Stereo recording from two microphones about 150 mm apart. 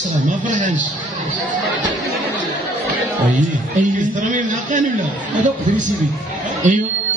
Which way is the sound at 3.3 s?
55° right (ahead or behind).